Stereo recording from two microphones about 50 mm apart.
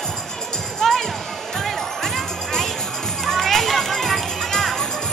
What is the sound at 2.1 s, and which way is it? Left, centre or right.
Music, centre.